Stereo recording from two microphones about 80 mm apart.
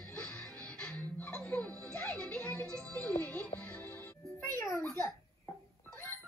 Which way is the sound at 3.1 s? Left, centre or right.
Left.